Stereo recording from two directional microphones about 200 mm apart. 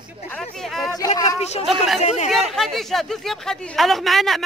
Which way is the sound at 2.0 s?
35° left (ahead or behind).